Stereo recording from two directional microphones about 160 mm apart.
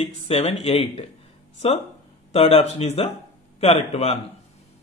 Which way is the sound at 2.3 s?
40° left (ahead or behind).